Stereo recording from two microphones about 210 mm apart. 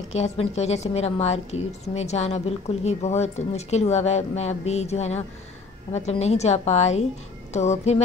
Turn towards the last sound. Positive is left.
turn(degrees=30)  # may be behind; listen again after turning